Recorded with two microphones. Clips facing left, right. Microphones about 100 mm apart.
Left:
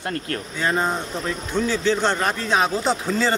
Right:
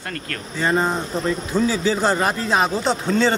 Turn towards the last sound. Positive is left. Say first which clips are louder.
# right 2 dB
turn(degrees=0)  # may be behind; listen again after turning